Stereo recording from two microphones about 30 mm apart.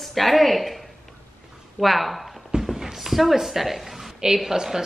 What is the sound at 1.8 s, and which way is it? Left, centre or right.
Speech, centre.